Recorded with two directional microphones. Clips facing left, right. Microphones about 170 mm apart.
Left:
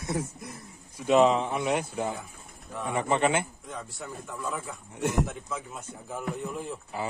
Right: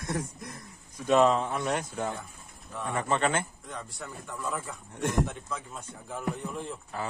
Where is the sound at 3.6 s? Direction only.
Centre (ahead or behind).